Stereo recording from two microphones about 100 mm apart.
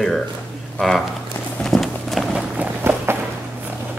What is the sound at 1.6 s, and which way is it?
Clip-clop, centre (ahead or behind).